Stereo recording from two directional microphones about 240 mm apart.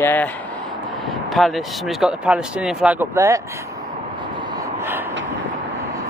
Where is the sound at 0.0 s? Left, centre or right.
Centre.